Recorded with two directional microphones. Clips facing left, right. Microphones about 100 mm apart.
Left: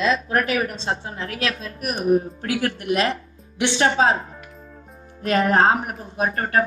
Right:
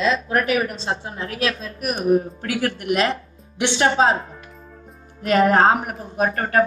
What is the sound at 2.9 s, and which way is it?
Speech, 30° right (ahead or behind).